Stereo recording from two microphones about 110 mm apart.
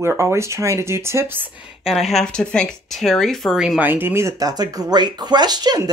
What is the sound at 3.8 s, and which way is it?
Speech, 20° right (ahead or behind).